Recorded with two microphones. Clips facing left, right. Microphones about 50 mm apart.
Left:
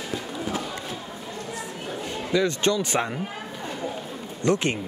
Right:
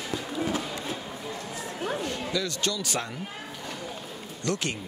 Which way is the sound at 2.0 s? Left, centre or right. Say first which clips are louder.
Left 6 dB; left.